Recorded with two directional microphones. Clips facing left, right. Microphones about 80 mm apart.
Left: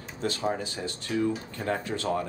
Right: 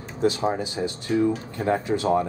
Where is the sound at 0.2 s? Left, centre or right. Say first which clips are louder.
Right 6 dB; centre.